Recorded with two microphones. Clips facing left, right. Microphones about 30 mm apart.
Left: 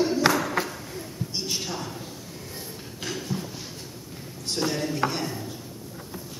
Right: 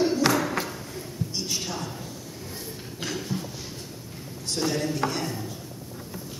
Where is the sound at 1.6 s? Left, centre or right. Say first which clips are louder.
Even; centre.